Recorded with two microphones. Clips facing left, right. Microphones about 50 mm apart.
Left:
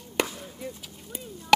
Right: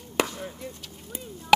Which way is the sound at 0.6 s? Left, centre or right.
Centre.